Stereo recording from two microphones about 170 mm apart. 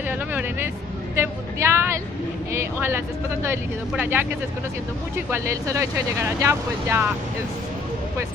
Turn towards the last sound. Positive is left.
turn(degrees=-15)  # may be behind; listen again after turning